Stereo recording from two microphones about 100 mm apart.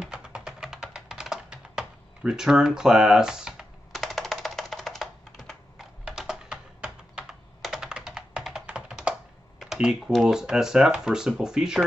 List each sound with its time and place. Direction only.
0.0 s computer keyboard: 10° right (ahead or behind)
4.0 s music: 5° left (ahead or behind)
6.0 s computer keyboard: 5° right (ahead or behind)
9.9 s speech: centre (ahead or behind)